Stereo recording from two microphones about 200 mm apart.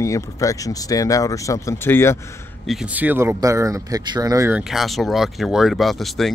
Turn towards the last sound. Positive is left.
turn(degrees=0)  # may be behind; listen again after turning